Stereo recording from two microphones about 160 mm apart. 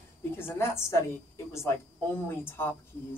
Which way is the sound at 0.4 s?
15° left (ahead or behind).